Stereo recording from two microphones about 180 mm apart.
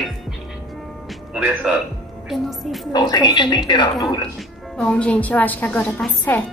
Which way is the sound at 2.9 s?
25° left (ahead or behind).